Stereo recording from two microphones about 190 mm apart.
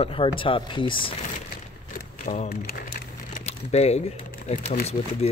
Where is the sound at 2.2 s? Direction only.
40° left (ahead or behind).